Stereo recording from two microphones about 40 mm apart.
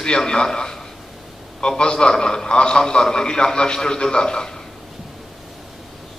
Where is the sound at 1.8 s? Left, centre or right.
Left.